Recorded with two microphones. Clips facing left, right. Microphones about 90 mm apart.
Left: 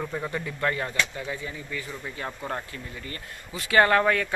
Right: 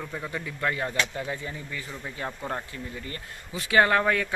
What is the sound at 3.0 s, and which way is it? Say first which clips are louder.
Speech: even; 20° right (ahead or behind).